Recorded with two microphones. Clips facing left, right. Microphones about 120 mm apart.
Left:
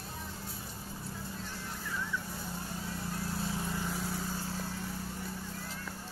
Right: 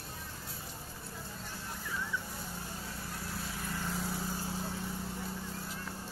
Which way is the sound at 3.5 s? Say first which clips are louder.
Left 3 dB; 20° left (ahead or behind).